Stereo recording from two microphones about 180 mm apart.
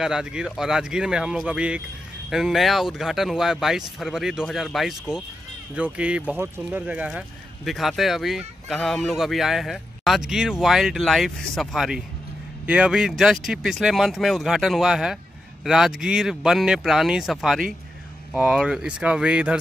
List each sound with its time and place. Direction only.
0.0 s speech: 5° right (ahead or behind)